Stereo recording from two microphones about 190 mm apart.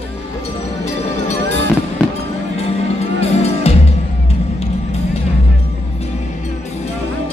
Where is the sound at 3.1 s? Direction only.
35° left (ahead or behind).